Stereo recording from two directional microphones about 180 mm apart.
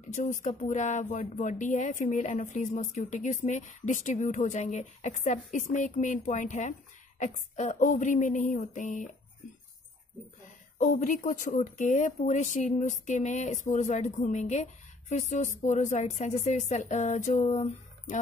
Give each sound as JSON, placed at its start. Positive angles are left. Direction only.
{"t": 0.1, "sound": "a woman's voice", "side_deg": 45}
{"t": 10.8, "sound": "a woman's voice", "side_deg": 45}